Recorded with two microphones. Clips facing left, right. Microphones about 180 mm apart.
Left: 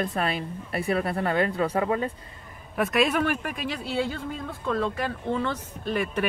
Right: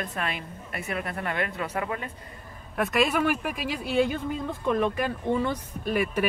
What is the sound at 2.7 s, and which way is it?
Speech, centre (ahead or behind).